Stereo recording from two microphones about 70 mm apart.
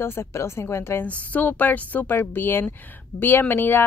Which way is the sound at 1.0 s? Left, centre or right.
Left.